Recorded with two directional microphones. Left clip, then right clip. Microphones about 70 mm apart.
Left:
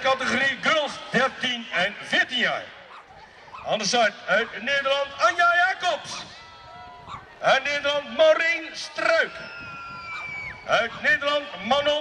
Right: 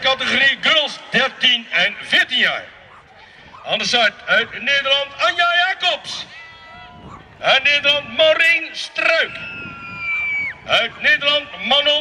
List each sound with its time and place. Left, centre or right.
0.0 s a sound: right
3.6 s a man's voice: right
7.4 s a man's voice: right
10.4 s a man's voice: right